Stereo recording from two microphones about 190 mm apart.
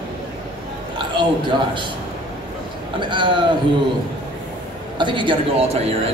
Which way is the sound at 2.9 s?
25° right (ahead or behind).